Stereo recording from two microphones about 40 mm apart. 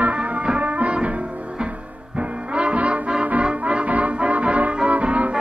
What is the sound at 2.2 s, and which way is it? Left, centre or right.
Music, right.